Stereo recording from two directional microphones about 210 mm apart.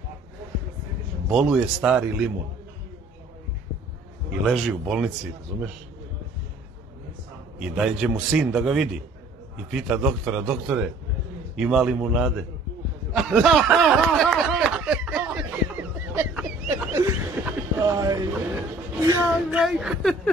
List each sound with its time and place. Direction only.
1.3 s speech: 5° right (ahead or behind)
4.5 s speech: centre (ahead or behind)
7.5 s speech: 5° right (ahead or behind)
13.1 s snicker: centre (ahead or behind)
17.5 s a sound: 15° right (ahead or behind)
18.9 s speech: 15° right (ahead or behind)
19.6 s speech: 5° right (ahead or behind)